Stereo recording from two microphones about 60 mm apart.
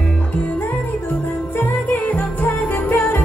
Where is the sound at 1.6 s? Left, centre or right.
Left.